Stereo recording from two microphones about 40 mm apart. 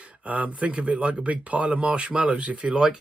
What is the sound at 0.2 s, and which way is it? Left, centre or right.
Speech, right.